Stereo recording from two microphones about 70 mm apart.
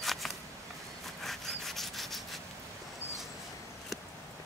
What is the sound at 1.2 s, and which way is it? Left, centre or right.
Rub, centre.